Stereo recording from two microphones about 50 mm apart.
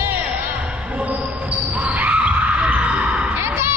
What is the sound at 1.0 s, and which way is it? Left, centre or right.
Basketball bounce, right.